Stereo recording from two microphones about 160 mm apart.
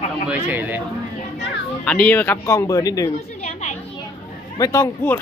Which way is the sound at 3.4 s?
50° left (ahead or behind).